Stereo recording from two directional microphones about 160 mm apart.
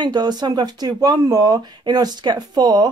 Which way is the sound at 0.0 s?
25° right (ahead or behind).